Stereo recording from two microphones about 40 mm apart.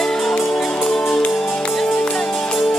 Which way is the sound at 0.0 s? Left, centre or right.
Centre.